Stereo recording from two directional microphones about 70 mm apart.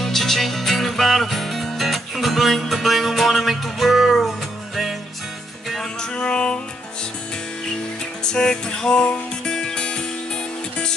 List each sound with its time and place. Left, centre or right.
0.0 s music: centre
5.7 s music: centre
8.2 s music: centre